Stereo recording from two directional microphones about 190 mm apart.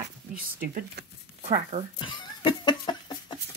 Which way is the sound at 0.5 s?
50° right (ahead or behind).